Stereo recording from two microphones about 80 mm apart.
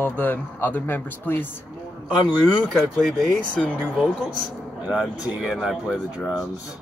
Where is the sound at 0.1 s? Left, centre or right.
Left.